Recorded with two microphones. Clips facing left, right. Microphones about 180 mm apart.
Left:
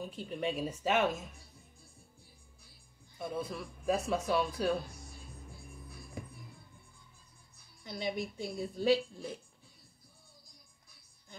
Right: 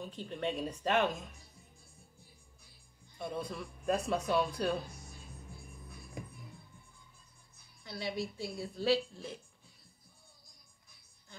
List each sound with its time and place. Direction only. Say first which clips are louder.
0.0 s speech: left 1 dB; 5° left (ahead or behind)
3.2 s speech: left 1 dB; centre (ahead or behind)
7.8 s speech: left 1 dB; 15° left (ahead or behind)